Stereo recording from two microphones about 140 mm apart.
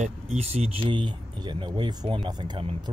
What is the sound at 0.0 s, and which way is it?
Speech, 50° right (ahead or behind).